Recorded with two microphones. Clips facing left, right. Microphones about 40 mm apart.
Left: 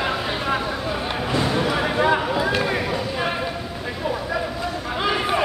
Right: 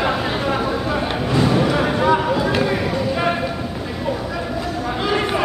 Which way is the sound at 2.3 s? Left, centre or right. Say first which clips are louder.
Right 3 dB; centre.